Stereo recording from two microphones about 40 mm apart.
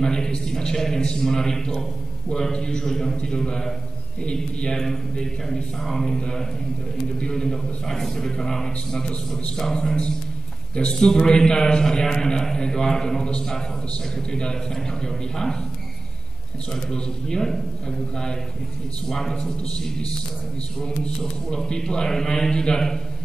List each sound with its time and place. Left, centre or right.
0.0 s a sound: centre
0.8 s a man's voice: centre
4.8 s a man's voice: centre
7.4 s a man's voice: centre
16.9 s a man's voice: centre
19.0 s a man's voice: centre
21.2 s a man's voice: centre